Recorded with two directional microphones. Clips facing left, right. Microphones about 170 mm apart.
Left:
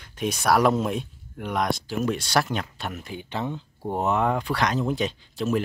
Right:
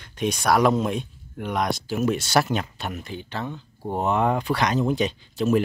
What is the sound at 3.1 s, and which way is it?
Speech, 15° left (ahead or behind).